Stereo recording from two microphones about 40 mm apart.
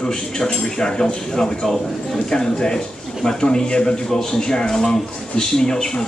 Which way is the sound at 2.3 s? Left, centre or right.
Centre.